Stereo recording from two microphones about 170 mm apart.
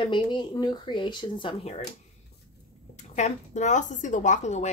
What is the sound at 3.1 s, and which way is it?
A woman's voice, 45° left (ahead or behind).